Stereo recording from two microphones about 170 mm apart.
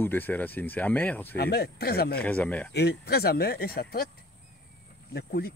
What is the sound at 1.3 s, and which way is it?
Speech, 70° left (ahead or behind).